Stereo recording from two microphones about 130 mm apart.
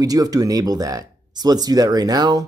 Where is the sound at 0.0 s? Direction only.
30° right (ahead or behind).